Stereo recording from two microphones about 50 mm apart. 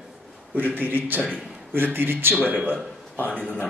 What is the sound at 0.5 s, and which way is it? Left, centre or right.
A man's voice, right.